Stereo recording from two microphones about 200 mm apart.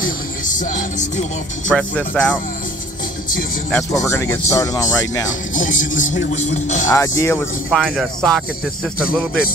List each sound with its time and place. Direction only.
0.0 s music: 40° left (ahead or behind)
1.7 s speech: 5° left (ahead or behind)
3.9 s speech: 15° left (ahead or behind)
5.5 s speech: 40° left (ahead or behind)
6.9 s speech: 15° left (ahead or behind)
7.7 s speech: centre (ahead or behind)